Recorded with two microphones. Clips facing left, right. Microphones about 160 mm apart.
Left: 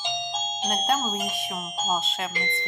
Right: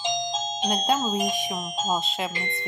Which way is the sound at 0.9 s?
15° right (ahead or behind).